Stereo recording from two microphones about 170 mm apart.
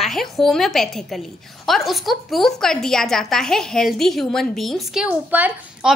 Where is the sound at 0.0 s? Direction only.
Centre (ahead or behind).